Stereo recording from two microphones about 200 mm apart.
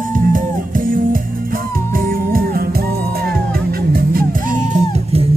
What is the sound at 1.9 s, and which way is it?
Music, 45° right (ahead or behind).